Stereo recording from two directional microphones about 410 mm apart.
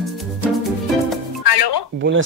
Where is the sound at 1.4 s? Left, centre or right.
Left.